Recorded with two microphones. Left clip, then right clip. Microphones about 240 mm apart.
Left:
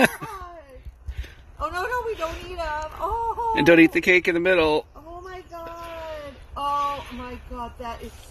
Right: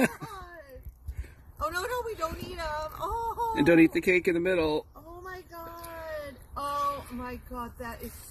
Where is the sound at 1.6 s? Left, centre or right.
Right.